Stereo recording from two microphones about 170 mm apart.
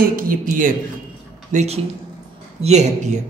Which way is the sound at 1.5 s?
40° right (ahead or behind).